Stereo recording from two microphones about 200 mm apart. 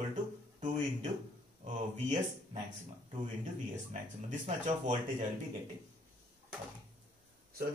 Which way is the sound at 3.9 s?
35° right (ahead or behind).